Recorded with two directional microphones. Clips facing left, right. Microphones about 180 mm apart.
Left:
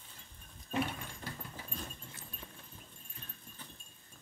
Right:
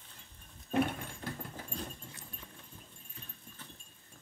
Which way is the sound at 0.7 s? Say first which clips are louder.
Right 5 dB; 50° right (ahead or behind).